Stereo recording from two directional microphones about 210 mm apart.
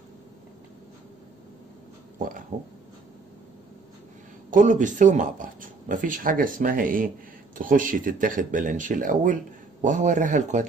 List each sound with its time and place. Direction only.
2.1 s speech: 40° right (ahead or behind)
4.5 s speech: 40° right (ahead or behind)